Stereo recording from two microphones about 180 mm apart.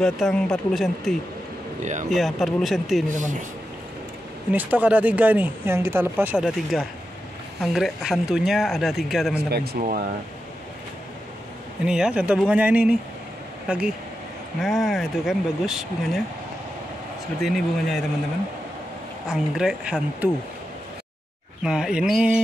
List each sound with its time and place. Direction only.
0.0 s speech: 5° left (ahead or behind)
3.1 s speech: 45° right (ahead or behind)
4.5 s speech: 10° right (ahead or behind)
9.3 s speech: 60° right (ahead or behind)
11.8 s speech: 5° right (ahead or behind)
17.4 s speech: centre (ahead or behind)
19.2 s speech: 5° right (ahead or behind)
21.6 s speech: 5° right (ahead or behind)